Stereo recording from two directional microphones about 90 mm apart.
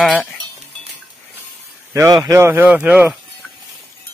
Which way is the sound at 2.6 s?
15° right (ahead or behind).